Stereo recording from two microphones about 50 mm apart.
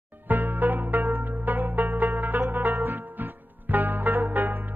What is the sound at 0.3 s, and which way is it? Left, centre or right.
Music, right.